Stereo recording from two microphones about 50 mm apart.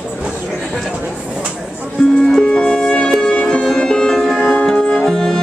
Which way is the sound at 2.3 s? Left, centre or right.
Centre.